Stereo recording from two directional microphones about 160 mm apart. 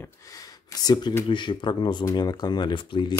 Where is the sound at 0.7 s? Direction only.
25° left (ahead or behind).